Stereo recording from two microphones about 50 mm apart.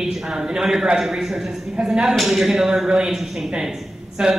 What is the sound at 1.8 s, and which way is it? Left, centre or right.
Speech, right.